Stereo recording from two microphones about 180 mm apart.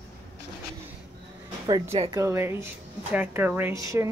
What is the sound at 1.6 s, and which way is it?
Speech, 20° right (ahead or behind).